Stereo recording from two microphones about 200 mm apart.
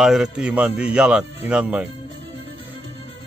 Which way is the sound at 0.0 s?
Centre (ahead or behind).